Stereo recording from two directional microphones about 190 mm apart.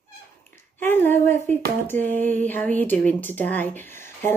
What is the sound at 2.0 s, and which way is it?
A woman's voice, 10° left (ahead or behind).